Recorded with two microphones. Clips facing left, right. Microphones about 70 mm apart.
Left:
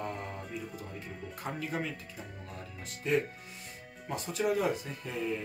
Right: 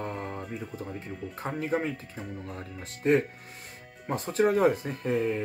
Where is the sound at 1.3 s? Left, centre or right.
Right.